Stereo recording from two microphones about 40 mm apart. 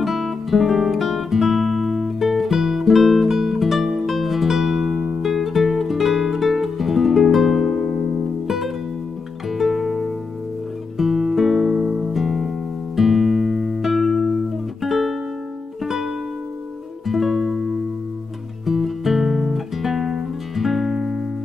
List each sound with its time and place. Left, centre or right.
0.0 s guitar: centre
5.2 s music: centre
11.0 s guitar: centre
12.9 s music: centre
18.7 s guitar: centre